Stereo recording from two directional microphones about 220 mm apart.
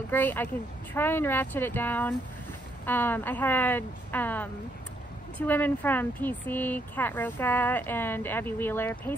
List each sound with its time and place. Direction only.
0.1 s speech: 10° left (ahead or behind)